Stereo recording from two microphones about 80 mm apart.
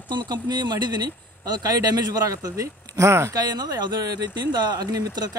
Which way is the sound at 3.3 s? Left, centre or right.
Right.